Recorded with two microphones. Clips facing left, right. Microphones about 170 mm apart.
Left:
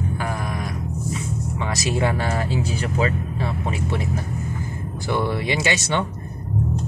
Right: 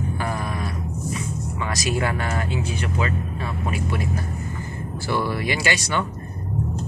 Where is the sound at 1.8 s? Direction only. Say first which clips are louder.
Left 2 dB; 25° left (ahead or behind).